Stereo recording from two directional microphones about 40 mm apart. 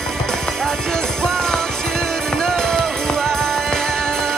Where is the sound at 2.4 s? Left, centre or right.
Centre.